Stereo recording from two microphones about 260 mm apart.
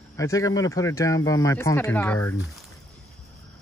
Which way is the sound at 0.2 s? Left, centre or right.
Centre.